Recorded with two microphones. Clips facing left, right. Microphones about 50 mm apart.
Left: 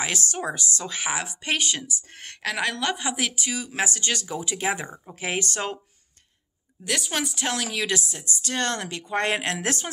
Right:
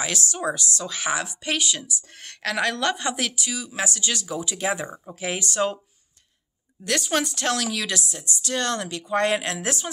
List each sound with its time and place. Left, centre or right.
0.0 s a woman's voice: left
2.4 s a woman's voice: centre
3.3 s a woman's voice: left
6.9 s a woman's voice: centre
7.3 s a woman's voice: left